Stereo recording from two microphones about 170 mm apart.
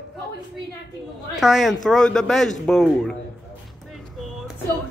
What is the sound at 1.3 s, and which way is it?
Speech, centre (ahead or behind).